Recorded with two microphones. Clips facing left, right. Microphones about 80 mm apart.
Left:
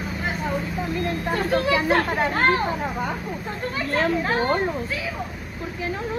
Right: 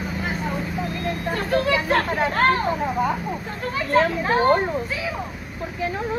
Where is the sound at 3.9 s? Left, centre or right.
Centre.